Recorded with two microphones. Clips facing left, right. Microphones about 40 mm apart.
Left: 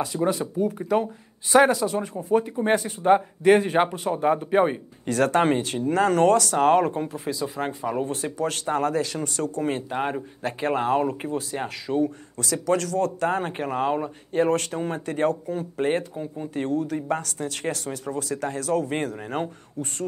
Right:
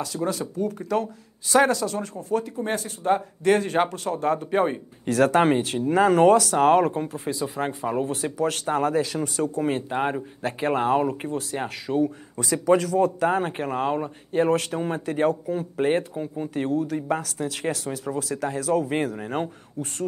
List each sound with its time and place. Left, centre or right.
0.0 s speech: centre
5.0 s speech: centre
7.6 s speech: centre
7.9 s speech: centre
12.4 s speech: centre